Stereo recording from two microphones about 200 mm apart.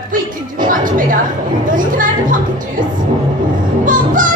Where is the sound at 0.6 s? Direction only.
40° right (ahead or behind).